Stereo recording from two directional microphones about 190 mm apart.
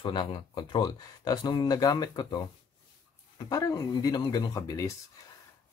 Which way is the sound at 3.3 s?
15° left (ahead or behind).